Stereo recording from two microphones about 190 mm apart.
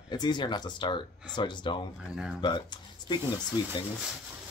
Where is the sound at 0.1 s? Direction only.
25° left (ahead or behind).